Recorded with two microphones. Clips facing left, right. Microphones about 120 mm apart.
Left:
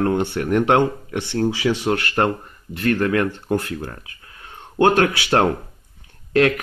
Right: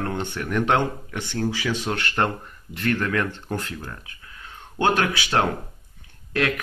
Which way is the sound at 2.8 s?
45° left (ahead or behind).